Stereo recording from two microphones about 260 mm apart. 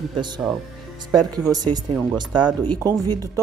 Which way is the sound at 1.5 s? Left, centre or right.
Centre.